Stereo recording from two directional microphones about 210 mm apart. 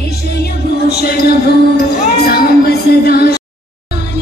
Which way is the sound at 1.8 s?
50° left (ahead or behind).